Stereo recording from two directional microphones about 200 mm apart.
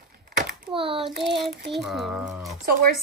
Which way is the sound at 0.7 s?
25° right (ahead or behind).